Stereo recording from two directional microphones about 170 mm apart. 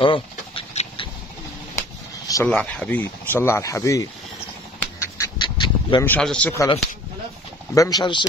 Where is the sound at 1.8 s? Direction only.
20° left (ahead or behind).